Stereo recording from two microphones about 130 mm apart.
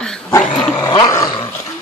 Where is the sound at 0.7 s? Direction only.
30° left (ahead or behind).